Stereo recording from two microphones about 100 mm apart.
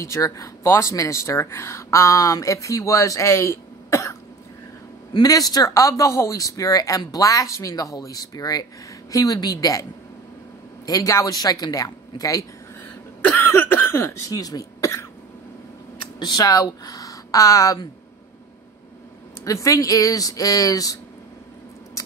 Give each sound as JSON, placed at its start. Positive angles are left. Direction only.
{"t": 0.0, "sound": "a man's voice", "side_deg": 30}
{"t": 10.9, "sound": "a man's voice", "side_deg": 35}
{"t": 13.2, "sound": "cough", "side_deg": 20}
{"t": 14.3, "sound": "speech", "side_deg": 40}
{"t": 16.2, "sound": "speech", "side_deg": 40}
{"t": 19.4, "sound": "a man's voice", "side_deg": 35}